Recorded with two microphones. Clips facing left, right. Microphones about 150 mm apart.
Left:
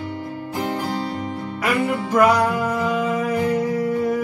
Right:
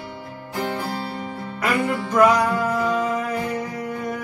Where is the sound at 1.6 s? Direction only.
Centre (ahead or behind).